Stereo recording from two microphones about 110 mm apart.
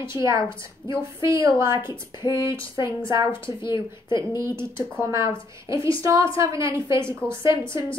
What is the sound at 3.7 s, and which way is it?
Speech, 45° left (ahead or behind).